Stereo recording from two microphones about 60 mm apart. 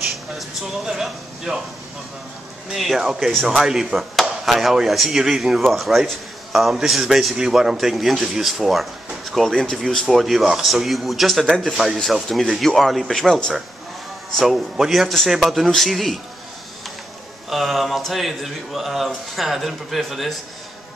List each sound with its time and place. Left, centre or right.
0.3 s speech: centre
2.7 s speech: centre
11.4 s speech: centre
11.7 s speech: centre
14.4 s speech: centre
17.5 s speech: centre